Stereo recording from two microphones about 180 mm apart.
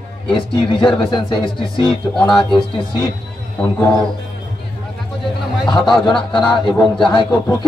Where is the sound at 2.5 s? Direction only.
25° left (ahead or behind).